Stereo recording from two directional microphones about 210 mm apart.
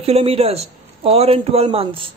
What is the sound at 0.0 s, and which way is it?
A man's voice, 30° right (ahead or behind).